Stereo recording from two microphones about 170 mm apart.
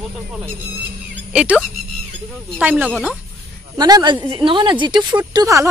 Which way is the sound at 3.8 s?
25° right (ahead or behind).